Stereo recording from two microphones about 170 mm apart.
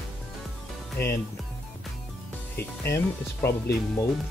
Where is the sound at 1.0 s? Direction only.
15° left (ahead or behind).